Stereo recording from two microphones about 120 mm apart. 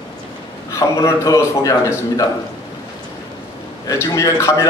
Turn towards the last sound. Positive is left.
turn(degrees=25)  # may be behind; listen again after turning